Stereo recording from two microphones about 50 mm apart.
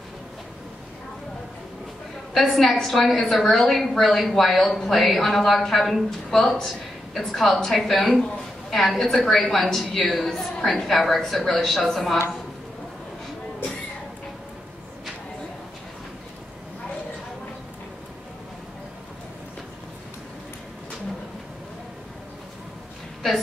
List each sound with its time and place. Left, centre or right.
2.3 s a woman's voice: centre